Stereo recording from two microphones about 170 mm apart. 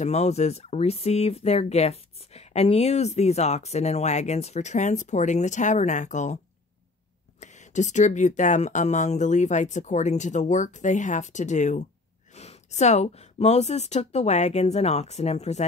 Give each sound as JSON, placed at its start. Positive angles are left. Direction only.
{"t": 0.0, "sound": "speech", "side_deg": 40}